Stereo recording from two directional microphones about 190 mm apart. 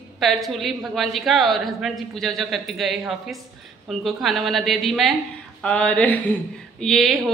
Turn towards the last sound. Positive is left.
turn(degrees=0)  # may be behind; listen again after turning